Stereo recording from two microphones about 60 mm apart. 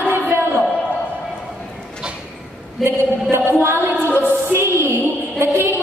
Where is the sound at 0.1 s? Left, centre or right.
Right.